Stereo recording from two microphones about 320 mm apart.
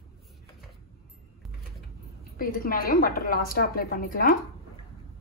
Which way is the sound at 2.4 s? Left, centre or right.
Left.